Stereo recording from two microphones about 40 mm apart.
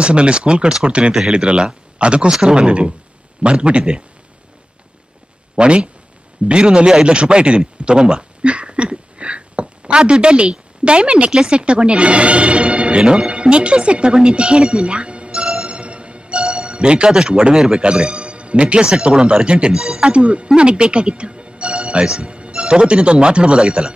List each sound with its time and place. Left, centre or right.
0.0 s speech: right
5.6 s a man's voice: right
22.0 s speech: centre